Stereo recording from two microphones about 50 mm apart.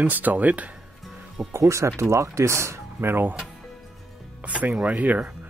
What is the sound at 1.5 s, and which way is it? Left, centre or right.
Speech, right.